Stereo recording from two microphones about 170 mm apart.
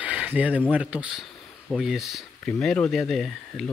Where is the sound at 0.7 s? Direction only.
10° right (ahead or behind).